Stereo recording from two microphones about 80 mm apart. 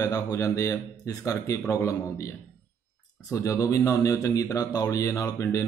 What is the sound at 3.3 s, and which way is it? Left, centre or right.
A man's voice, left.